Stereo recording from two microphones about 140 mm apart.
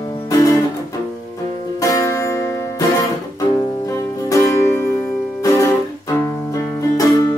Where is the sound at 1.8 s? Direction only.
25° left (ahead or behind).